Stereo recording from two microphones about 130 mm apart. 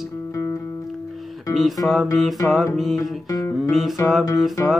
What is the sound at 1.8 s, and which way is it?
Music, centre (ahead or behind).